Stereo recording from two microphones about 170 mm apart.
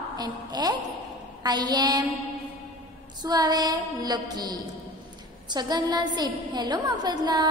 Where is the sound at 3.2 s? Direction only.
25° right (ahead or behind).